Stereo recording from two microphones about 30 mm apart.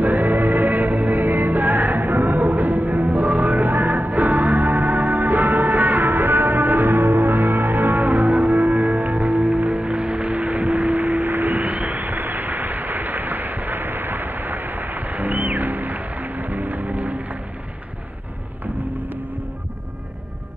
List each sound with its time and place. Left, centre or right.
0.0 s music: right
11.4 s vehicle: right
18.6 s music: right